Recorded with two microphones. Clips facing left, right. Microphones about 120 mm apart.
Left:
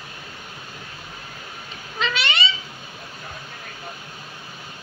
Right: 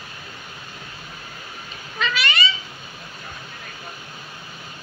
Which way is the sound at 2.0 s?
25° left (ahead or behind).